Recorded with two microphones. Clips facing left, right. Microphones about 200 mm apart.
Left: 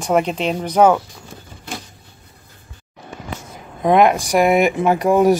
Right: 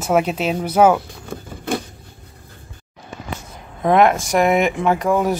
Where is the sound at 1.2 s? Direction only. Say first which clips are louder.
Right 9 dB; 60° right (ahead or behind).